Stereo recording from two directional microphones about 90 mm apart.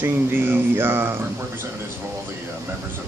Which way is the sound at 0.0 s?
25° right (ahead or behind).